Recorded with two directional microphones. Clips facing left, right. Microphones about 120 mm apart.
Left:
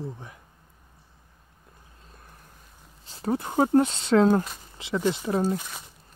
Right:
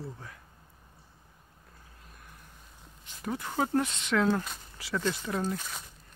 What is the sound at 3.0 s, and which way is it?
Speech, 35° left (ahead or behind).